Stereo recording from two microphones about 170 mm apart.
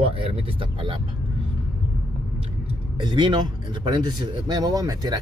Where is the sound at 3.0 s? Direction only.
25° right (ahead or behind).